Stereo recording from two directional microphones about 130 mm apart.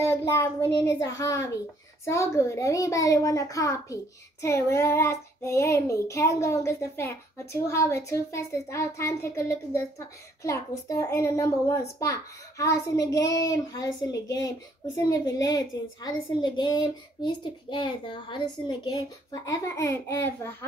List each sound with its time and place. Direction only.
0.0 s a child's voice: 20° left (ahead or behind)